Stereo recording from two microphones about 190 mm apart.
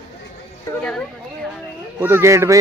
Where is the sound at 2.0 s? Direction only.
15° right (ahead or behind).